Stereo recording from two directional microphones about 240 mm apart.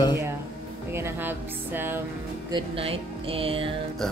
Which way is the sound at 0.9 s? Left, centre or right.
Centre.